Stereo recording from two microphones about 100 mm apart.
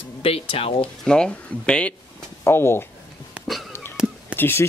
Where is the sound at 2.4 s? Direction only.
25° left (ahead or behind).